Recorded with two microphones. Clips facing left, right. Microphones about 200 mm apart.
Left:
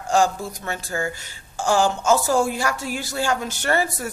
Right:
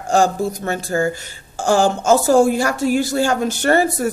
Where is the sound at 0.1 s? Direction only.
45° right (ahead or behind).